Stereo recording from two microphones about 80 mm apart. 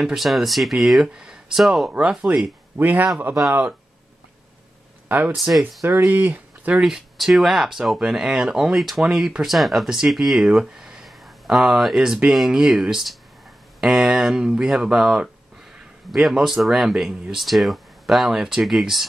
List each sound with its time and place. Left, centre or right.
0.0 s speech: centre
1.9 s a man's voice: centre
5.0 s a sound: right
5.3 s speech: centre
6.0 s speech: right; by 19.0 s centre